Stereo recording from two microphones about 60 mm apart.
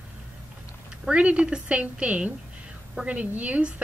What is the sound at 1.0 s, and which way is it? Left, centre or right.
A woman's voice, centre.